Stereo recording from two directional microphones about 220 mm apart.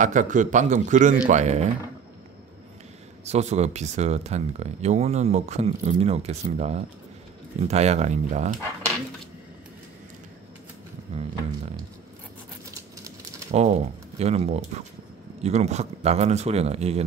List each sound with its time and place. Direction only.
0.0 s speech: 35° right (ahead or behind)
3.3 s speech: 30° right (ahead or behind)
13.5 s speech: 30° right (ahead or behind)